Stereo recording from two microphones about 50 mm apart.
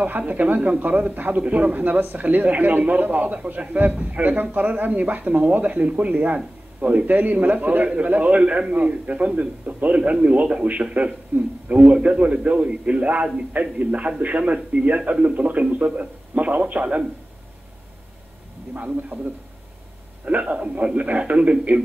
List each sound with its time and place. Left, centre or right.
0.3 s a man's voice: right
18.7 s a man's voice: right
20.2 s a man's voice: right